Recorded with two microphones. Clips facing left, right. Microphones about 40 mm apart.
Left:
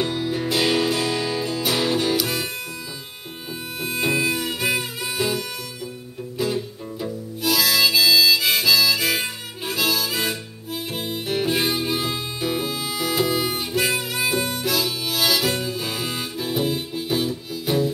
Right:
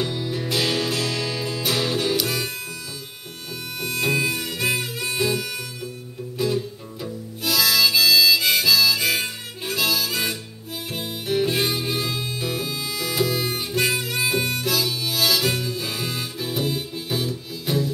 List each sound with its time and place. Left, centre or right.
0.0 s music: centre
3.8 s music: centre
7.0 s harmonica: centre
12.0 s music: centre
14.3 s harmonica: centre